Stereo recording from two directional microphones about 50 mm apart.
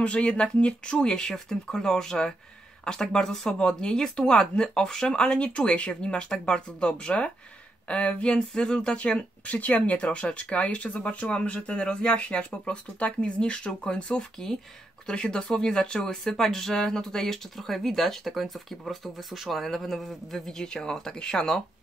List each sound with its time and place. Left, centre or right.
0.0 s speech: left